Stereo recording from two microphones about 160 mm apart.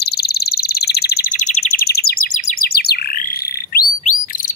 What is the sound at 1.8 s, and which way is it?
Bird, 75° left (ahead or behind).